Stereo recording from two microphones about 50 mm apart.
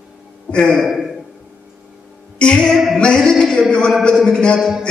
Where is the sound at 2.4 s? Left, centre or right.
Centre.